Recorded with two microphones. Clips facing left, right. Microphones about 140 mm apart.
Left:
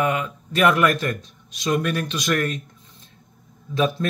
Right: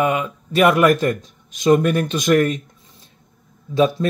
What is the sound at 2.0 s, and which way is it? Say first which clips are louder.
Speech: right 7 dB; 45° right (ahead or behind).